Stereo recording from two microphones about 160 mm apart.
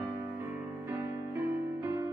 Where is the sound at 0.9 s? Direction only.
20° right (ahead or behind).